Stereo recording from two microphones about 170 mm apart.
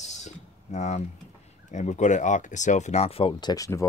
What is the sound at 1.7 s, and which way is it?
Speech, 45° left (ahead or behind).